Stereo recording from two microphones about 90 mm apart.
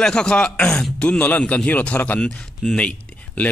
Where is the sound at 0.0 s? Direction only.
10° left (ahead or behind).